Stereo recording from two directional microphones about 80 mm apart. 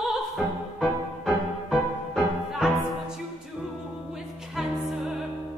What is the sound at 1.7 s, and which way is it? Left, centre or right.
Music, centre.